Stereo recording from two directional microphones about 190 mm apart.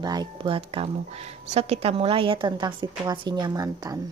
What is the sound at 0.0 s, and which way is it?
A woman's voice, 20° right (ahead or behind).